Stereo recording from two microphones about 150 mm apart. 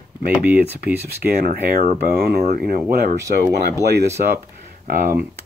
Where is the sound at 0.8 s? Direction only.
90° right.